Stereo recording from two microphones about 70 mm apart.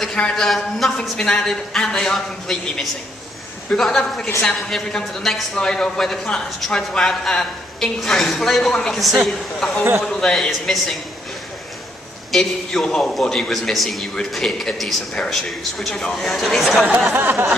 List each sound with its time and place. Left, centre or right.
0.0 s a man's voice: centre
12.3 s a woman's voice: centre
17.1 s a sound: right